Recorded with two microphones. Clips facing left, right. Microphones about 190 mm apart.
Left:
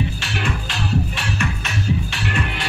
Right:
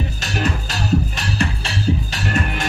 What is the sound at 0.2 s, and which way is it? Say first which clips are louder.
Music: right 3 dB; 40° right (ahead or behind).